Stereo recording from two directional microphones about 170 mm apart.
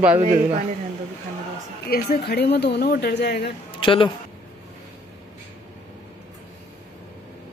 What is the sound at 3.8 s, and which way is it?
Speech, 30° left (ahead or behind).